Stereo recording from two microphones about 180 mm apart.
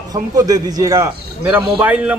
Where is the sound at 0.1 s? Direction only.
20° right (ahead or behind).